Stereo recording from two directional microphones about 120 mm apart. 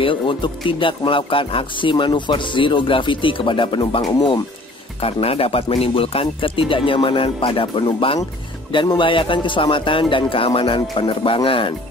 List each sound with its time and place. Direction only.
0.0 s speech: 45° left (ahead or behind)
5.0 s speech: 55° left (ahead or behind)